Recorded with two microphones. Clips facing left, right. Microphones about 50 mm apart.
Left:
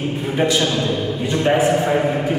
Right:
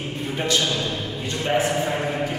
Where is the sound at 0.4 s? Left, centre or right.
Centre.